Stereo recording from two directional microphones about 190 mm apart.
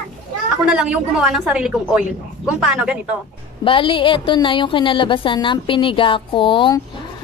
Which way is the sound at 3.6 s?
25° left (ahead or behind).